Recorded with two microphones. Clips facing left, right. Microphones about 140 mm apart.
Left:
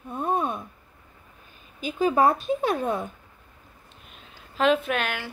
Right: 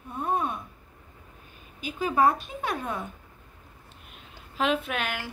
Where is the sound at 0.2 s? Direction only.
30° left (ahead or behind).